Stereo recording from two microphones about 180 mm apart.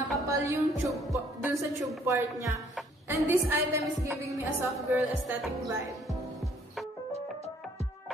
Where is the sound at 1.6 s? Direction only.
15° right (ahead or behind).